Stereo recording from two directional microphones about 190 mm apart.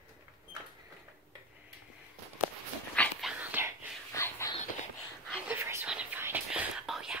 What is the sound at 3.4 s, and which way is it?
Whispering, 10° right (ahead or behind).